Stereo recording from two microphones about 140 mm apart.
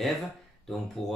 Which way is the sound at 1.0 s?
40° left (ahead or behind).